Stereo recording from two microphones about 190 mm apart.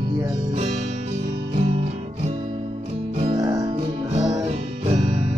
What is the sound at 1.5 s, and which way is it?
Music, 30° right (ahead or behind).